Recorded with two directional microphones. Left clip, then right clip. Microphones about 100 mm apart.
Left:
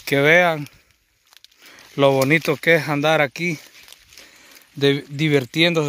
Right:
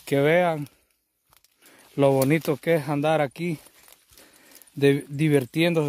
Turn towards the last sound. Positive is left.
turn(degrees=-10)  # may be behind; listen again after turning